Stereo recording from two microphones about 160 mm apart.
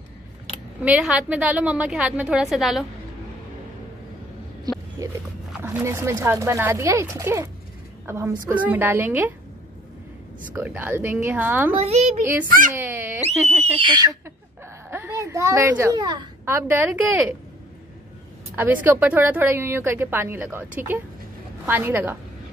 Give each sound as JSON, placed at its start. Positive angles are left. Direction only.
{"t": 0.8, "sound": "a woman's voice", "side_deg": -5}
{"t": 4.7, "sound": "a sound", "side_deg": -25}
{"t": 5.6, "sound": "a woman's voice", "side_deg": -15}
{"t": 10.5, "sound": "a woman's voice", "side_deg": -10}
{"t": 11.7, "sound": "a woman's voice", "side_deg": -40}
{"t": 12.4, "sound": "speech", "side_deg": -60}
{"t": 12.7, "sound": "a sound", "side_deg": -15}
{"t": 13.7, "sound": "speech", "side_deg": -30}
{"t": 14.9, "sound": "a woman's voice", "side_deg": -15}
{"t": 15.9, "sound": "speech", "side_deg": -25}
{"t": 16.4, "sound": "a woman's voice", "side_deg": -15}
{"t": 18.6, "sound": "a woman's voice", "side_deg": -10}